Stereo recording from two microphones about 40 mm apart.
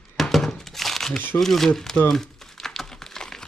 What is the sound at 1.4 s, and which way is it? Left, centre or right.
Speech, centre.